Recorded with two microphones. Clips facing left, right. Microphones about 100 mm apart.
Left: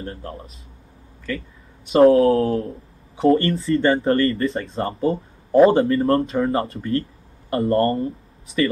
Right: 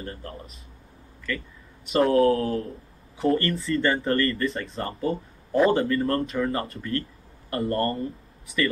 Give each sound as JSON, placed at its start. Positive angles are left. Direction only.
{"t": 0.0, "sound": "speech", "side_deg": 30}
{"t": 1.9, "sound": "speech", "side_deg": 30}